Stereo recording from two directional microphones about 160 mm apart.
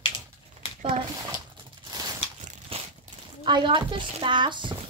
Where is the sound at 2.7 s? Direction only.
35° right (ahead or behind).